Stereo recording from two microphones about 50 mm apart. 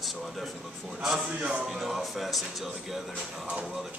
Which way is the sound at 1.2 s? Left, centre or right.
Centre.